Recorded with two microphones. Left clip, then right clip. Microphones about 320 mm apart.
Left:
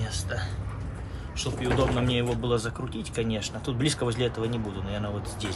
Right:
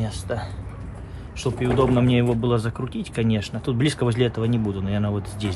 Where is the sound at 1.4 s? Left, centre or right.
Right.